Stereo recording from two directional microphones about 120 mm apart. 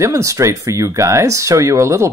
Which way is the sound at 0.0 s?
25° right (ahead or behind).